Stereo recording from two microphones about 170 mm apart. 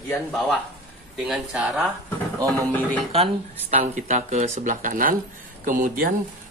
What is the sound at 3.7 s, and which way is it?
Speech, 45° right (ahead or behind).